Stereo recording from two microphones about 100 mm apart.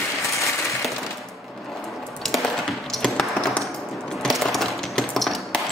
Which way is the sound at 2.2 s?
5° left (ahead or behind).